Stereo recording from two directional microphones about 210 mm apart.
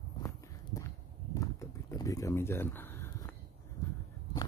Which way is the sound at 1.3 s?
15° left (ahead or behind).